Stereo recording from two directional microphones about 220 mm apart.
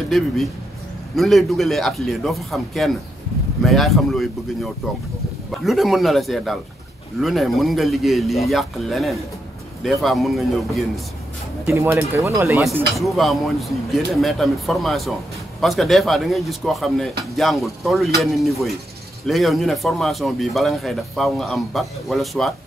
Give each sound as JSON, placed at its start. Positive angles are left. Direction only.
{"t": 1.1, "sound": "a man's voice", "side_deg": 0}
{"t": 11.6, "sound": "speech", "side_deg": -10}
{"t": 13.0, "sound": "a man's voice", "side_deg": 0}